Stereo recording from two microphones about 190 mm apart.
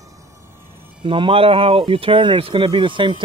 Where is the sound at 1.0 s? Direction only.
25° right (ahead or behind).